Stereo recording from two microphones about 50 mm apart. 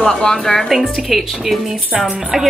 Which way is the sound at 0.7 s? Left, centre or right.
Centre.